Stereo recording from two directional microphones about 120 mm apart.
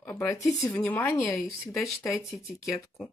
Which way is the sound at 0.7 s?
10° left (ahead or behind).